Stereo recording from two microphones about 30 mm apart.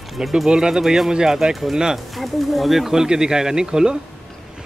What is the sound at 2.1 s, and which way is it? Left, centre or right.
Speech, centre.